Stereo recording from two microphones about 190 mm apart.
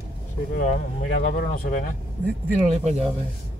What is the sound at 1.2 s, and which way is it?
Speech, 40° left (ahead or behind).